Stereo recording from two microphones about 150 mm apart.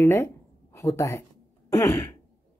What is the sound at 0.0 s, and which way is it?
A woman's voice, 20° left (ahead or behind).